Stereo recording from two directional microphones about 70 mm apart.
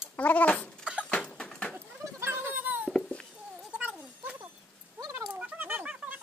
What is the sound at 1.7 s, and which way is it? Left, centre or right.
Goat, right.